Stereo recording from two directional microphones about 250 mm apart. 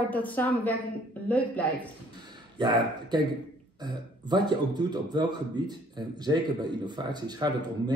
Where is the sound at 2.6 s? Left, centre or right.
Centre.